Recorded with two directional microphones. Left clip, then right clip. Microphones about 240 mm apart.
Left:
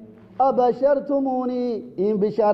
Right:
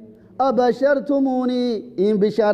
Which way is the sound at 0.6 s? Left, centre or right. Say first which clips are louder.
Right 1 dB; right.